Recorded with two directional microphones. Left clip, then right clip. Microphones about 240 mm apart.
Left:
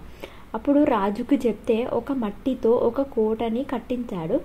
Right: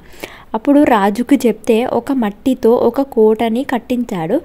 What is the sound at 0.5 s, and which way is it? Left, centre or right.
A woman's voice, right.